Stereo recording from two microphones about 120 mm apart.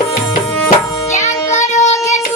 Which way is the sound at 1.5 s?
80° left.